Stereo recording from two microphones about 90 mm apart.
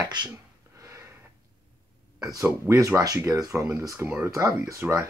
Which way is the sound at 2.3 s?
40° right (ahead or behind).